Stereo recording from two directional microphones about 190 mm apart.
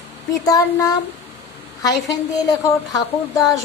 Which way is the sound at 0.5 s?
20° left (ahead or behind).